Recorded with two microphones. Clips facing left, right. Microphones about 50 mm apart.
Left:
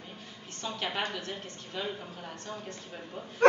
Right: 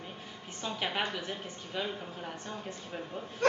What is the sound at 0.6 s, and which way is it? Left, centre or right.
A woman's voice, centre.